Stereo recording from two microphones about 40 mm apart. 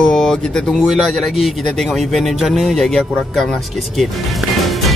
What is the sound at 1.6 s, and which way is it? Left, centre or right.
Speech, centre.